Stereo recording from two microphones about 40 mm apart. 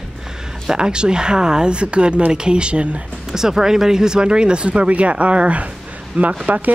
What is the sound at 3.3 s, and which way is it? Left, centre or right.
Speech, centre.